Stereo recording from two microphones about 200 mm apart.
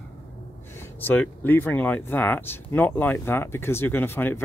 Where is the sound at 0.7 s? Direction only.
10° left (ahead or behind).